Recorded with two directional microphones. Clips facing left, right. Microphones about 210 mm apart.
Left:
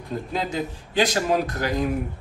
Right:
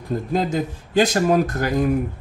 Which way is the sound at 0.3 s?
45° right (ahead or behind).